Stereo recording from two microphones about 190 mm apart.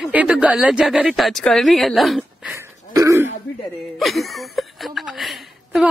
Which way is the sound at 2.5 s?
15° right (ahead or behind).